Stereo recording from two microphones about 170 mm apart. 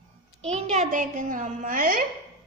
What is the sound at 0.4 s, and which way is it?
A woman's voice, 40° right (ahead or behind).